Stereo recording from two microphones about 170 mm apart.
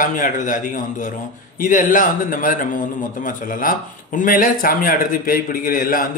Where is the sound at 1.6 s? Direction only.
50° left (ahead or behind).